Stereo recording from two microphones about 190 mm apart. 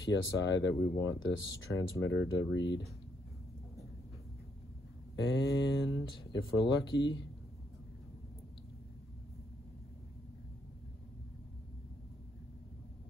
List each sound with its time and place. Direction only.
0.0 s speech: 80° left
5.1 s speech: 80° left